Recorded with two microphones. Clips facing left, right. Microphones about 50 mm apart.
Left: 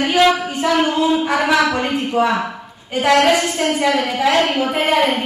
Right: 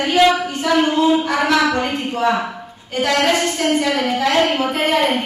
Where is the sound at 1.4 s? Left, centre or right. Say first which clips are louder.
Even; centre.